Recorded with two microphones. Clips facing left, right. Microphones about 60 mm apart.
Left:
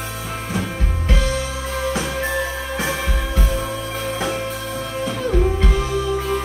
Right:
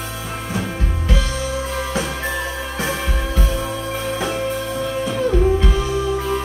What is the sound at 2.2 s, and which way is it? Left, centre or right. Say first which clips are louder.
Music: left 1 dB; left.